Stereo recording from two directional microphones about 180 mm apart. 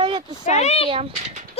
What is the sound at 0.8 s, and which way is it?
Speech, 30° right (ahead or behind).